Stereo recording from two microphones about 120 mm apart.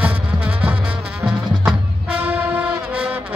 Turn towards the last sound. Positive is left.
turn(degrees=-10)  # may be behind; listen again after turning